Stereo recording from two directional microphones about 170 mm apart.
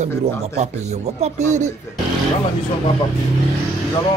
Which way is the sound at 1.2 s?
45° right (ahead or behind).